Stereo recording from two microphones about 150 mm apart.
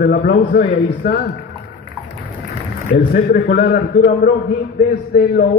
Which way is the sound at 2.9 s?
80° left.